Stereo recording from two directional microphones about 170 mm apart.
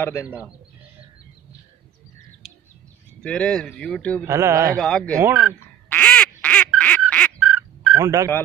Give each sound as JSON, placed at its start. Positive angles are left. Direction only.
{"t": 0.0, "sound": "a man's voice", "side_deg": 15}
{"t": 3.2, "sound": "speech", "side_deg": 5}
{"t": 4.3, "sound": "a man's voice", "side_deg": -20}
{"t": 4.7, "sound": "speech", "side_deg": 5}
{"t": 5.1, "sound": "speech", "side_deg": -20}
{"t": 5.9, "sound": "duck", "side_deg": 10}
{"t": 7.1, "sound": "fowl", "side_deg": 10}
{"t": 7.3, "sound": "a sound", "side_deg": -5}
{"t": 8.0, "sound": "speech", "side_deg": -20}